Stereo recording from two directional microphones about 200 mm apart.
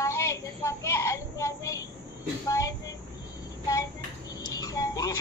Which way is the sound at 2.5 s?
15° left (ahead or behind).